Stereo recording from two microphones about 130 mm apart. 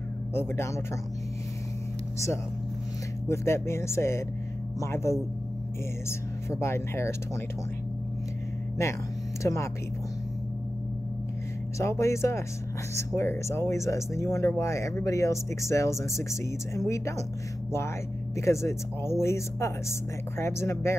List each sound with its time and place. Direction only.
0.3 s speech: 20° left (ahead or behind)
3.3 s speech: 20° left (ahead or behind)
9.4 s speech: 20° left (ahead or behind)
11.8 s speech: 20° left (ahead or behind)